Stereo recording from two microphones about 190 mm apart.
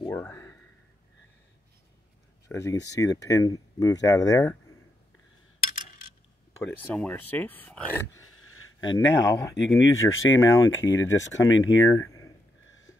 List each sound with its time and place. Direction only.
0.1 s a sound: 10° left (ahead or behind)
2.4 s speech: 15° left (ahead or behind)
6.6 s speech: 5° left (ahead or behind)
8.2 s a sound: 90° left
8.9 s speech: 20° left (ahead or behind)
9.9 s speech: 90° left
10.4 s speech: 15° left (ahead or behind)
11.5 s speech: 90° left
11.9 s speech: 15° left (ahead or behind)